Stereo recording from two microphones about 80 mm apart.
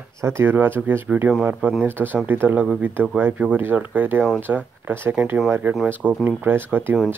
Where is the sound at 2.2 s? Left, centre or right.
Right.